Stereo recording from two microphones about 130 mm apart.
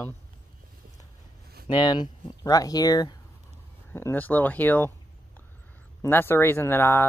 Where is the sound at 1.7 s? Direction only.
35° left (ahead or behind).